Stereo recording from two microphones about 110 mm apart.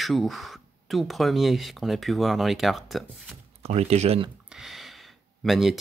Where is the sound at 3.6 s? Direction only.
75° right (ahead or behind).